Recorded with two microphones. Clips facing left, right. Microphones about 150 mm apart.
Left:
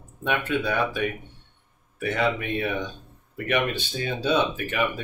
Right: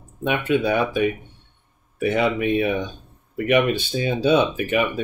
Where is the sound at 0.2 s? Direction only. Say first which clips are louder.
Right 5 dB; 15° right (ahead or behind).